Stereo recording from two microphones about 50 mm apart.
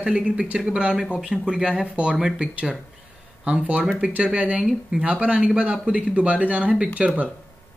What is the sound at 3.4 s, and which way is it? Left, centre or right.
Speech, right.